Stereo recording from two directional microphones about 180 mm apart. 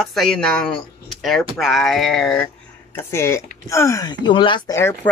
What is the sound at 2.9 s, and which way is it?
Speech, 15° left (ahead or behind).